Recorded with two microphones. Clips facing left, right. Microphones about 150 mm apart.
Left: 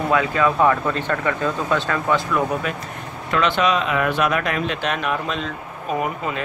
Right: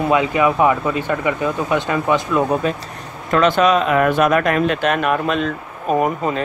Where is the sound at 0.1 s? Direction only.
20° right (ahead or behind).